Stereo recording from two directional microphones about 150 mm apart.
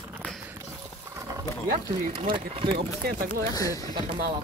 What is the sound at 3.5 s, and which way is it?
Speech, 25° left (ahead or behind).